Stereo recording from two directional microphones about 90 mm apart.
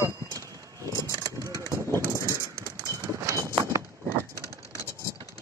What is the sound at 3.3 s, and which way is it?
Horse, 35° right (ahead or behind).